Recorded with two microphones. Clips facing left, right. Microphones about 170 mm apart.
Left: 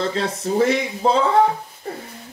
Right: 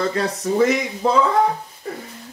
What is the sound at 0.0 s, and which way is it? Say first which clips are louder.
Speech: right 1 dB; 25° left (ahead or behind).